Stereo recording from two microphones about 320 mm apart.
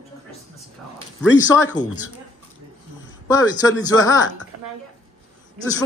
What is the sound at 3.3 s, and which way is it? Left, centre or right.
Speech, centre.